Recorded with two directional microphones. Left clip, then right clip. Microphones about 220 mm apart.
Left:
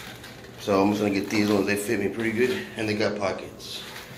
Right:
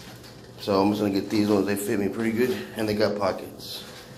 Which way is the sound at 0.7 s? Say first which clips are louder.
Even; 15° right (ahead or behind).